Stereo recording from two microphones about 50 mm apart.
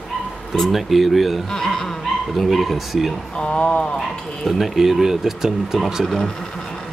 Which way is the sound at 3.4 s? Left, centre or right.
Left.